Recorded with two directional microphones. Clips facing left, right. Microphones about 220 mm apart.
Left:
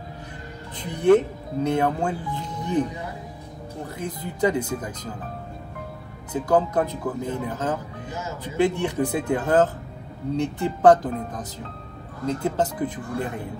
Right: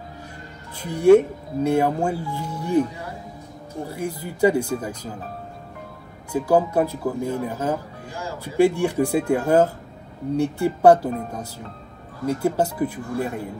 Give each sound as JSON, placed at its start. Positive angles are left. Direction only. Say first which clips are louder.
{"t": 0.7, "sound": "speech", "louder": "right 4 dB", "side_deg": -10}
{"t": 3.8, "sound": "speech", "louder": "right 3 dB", "side_deg": -10}
{"t": 6.3, "sound": "speech", "louder": "right 2 dB", "side_deg": -10}
{"t": 7.2, "sound": "speech", "louder": "right 4 dB", "side_deg": 20}
{"t": 7.4, "sound": "speech", "louder": "right 2 dB", "side_deg": -10}
{"t": 8.1, "sound": "music", "louder": "right 1 dB", "side_deg": 20}
{"t": 8.5, "sound": "speech", "louder": "right 4 dB", "side_deg": -10}